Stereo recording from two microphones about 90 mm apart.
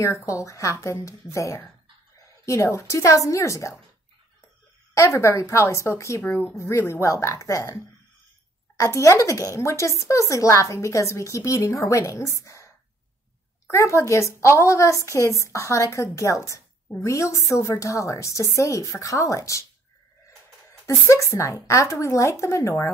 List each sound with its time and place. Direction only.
0.0 s speech: 35° left (ahead or behind)
4.9 s speech: 35° left (ahead or behind)
12.4 s a sound: 35° left (ahead or behind)
13.7 s speech: 30° left (ahead or behind)
20.8 s speech: 35° left (ahead or behind)